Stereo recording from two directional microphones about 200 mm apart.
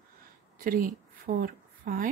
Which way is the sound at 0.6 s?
45° right (ahead or behind).